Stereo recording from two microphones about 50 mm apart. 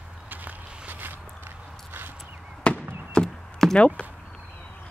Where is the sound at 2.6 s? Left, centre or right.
Left.